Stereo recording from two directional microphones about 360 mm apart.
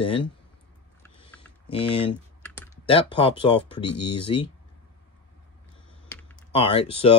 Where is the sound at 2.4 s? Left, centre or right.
Centre.